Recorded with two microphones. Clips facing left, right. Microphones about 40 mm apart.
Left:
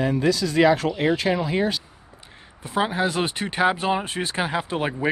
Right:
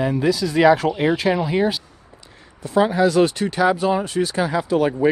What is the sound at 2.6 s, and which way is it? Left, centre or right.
Speech, left.